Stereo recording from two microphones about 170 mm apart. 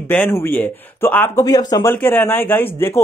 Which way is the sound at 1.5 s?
20° left (ahead or behind).